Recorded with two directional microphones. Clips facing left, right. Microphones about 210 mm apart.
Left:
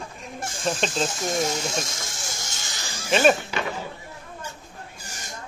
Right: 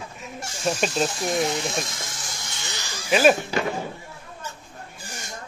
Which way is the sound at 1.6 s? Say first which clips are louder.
Right 1 dB; 45° left (ahead or behind).